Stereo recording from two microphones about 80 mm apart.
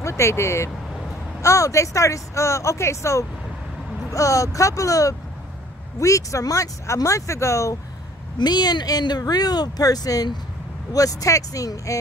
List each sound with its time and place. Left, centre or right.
0.0 s speech: left
8.4 s speech: left